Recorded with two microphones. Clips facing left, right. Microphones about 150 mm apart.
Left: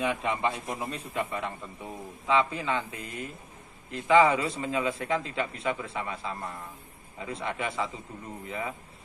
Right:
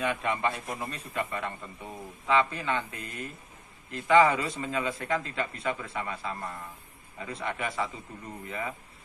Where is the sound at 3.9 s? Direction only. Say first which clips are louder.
Even; 20° left (ahead or behind).